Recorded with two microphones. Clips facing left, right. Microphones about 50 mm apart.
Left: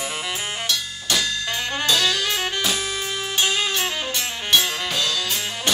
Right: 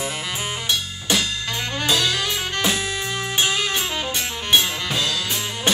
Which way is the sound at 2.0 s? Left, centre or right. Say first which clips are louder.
Even; centre.